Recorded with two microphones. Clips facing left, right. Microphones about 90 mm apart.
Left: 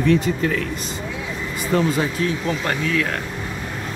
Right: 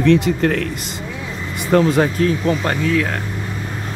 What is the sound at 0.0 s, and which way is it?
Speech, 90° right.